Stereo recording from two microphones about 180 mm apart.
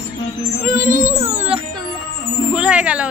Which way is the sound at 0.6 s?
45° right (ahead or behind).